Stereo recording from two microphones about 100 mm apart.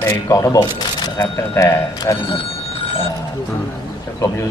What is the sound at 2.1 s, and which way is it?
Telephone bell ringing, 65° left (ahead or behind).